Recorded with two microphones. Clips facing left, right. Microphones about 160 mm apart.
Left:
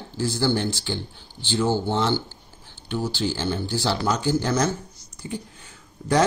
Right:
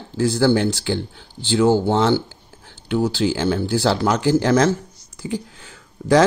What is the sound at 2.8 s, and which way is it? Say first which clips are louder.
Speech: right 7 dB; 75° right (ahead or behind).